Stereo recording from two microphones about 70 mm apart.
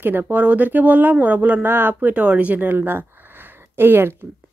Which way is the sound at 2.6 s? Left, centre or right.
Right.